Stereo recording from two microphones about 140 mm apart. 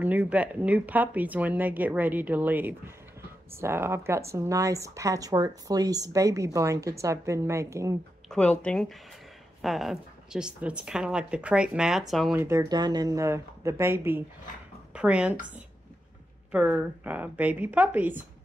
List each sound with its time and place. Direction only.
0.0 s speech: 10° right (ahead or behind)
8.3 s a woman's voice: 5° left (ahead or behind)
12.4 s speech: 20° right (ahead or behind)
16.5 s speech: 10° right (ahead or behind)